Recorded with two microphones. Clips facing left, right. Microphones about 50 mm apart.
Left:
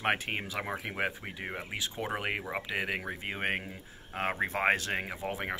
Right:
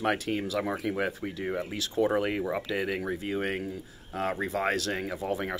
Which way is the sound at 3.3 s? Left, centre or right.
Left.